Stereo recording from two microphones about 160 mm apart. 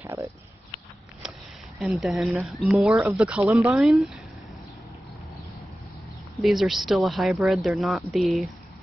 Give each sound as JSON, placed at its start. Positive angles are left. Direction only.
{"t": 0.0, "sound": "speech", "side_deg": -20}
{"t": 1.8, "sound": "speech", "side_deg": 0}
{"t": 6.3, "sound": "speech", "side_deg": 0}